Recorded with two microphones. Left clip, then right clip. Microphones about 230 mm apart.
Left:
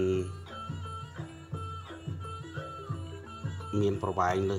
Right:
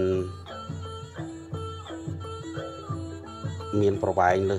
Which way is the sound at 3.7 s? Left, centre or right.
Centre.